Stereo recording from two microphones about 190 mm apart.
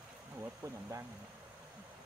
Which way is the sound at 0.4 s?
15° right (ahead or behind).